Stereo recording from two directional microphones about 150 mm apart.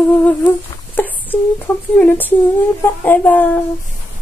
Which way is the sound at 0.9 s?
10° left (ahead or behind).